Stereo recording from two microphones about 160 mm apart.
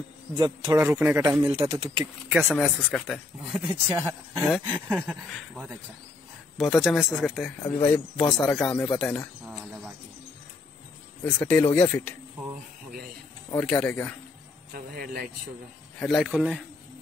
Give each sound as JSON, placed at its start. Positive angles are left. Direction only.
{"t": 0.7, "sound": "a man's voice", "side_deg": -15}
{"t": 1.5, "sound": "speech", "side_deg": -35}
{"t": 2.6, "sound": "a man's voice", "side_deg": 0}
{"t": 4.4, "sound": "a man's voice", "side_deg": 0}
{"t": 11.2, "sound": "speech", "side_deg": 10}
{"t": 13.5, "sound": "speech", "side_deg": 10}
{"t": 14.7, "sound": "speech", "side_deg": -70}
{"t": 16.0, "sound": "a man's voice", "side_deg": 0}